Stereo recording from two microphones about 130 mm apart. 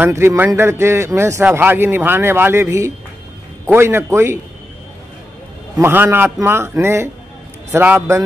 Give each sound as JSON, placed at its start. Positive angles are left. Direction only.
{"t": 0.0, "sound": "a man's voice", "side_deg": -20}
{"t": 5.8, "sound": "a man's voice", "side_deg": -15}